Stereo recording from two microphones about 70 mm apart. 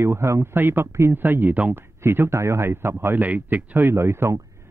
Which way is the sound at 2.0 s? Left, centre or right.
Right.